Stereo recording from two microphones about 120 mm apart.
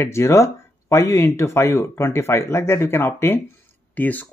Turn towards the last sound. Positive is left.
turn(degrees=15)  # may be behind; listen again after turning